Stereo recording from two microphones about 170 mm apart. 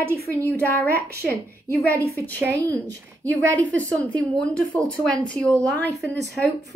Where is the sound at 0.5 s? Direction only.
10° left (ahead or behind).